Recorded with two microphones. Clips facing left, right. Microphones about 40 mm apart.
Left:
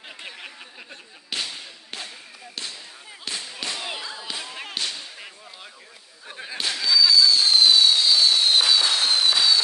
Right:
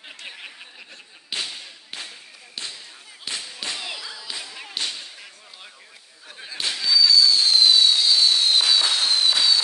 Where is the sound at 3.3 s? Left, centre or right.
Centre.